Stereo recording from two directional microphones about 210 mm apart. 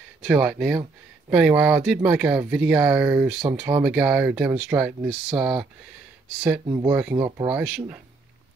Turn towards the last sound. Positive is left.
turn(degrees=-5)  # may be behind; listen again after turning